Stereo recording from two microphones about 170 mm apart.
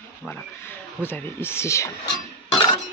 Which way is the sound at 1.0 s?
15° left (ahead or behind).